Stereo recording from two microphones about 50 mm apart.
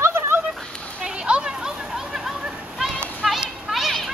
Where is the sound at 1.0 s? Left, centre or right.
Centre.